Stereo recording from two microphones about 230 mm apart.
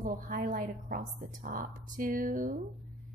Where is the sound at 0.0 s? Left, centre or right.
Right.